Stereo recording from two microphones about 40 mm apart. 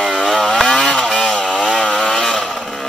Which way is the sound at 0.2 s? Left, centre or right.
Centre.